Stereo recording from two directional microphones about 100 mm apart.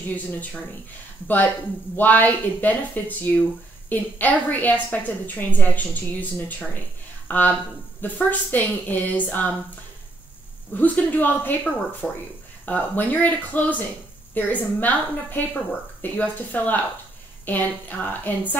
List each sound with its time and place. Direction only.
0.1 s a woman's voice: 15° left (ahead or behind)
7.2 s a woman's voice: 15° left (ahead or behind)
10.8 s a woman's voice: 15° left (ahead or behind)